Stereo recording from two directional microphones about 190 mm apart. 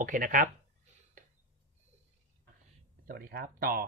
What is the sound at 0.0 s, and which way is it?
Speech, 45° right (ahead or behind).